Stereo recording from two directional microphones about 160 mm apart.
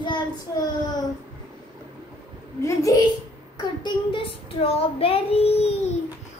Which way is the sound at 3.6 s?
30° left (ahead or behind).